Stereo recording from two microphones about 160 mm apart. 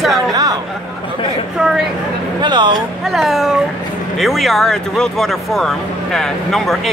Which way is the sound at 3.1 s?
Centre (ahead or behind).